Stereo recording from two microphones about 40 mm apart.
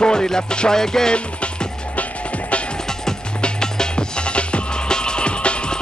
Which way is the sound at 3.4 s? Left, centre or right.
Left.